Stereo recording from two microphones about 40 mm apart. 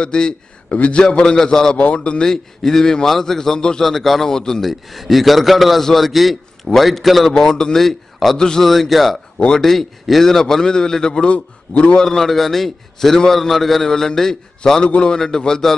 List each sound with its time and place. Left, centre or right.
0.0 s a man's voice: left
0.7 s a man's voice: left
1.0 s a man's voice: centre
2.3 s a man's voice: centre
4.6 s a man's voice: centre
7.3 s a man's voice: centre
8.6 s a man's voice: centre
11.2 s a man's voice: left
12.0 s a man's voice: centre